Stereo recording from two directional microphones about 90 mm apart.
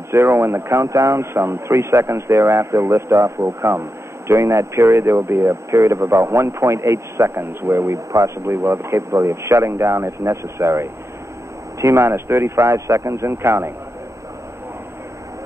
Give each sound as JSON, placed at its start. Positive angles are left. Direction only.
{"t": 0.1, "sound": "speech", "side_deg": -30}